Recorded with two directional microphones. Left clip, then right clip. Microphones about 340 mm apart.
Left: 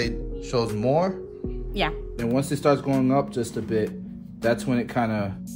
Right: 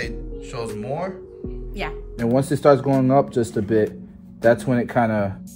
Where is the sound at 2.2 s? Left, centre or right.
Centre.